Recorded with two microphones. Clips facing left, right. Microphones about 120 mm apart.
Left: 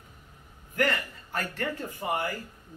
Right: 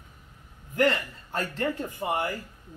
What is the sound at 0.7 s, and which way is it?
Speech, 25° right (ahead or behind).